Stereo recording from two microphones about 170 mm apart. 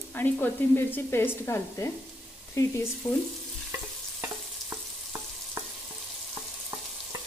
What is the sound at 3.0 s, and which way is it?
Speech, 10° left (ahead or behind).